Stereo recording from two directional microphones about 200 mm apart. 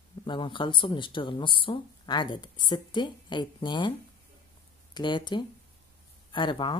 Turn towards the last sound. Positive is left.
turn(degrees=25)  # may be behind; listen again after turning